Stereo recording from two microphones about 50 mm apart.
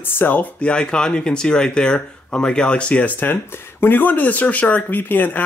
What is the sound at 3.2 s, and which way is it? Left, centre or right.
Speech, left.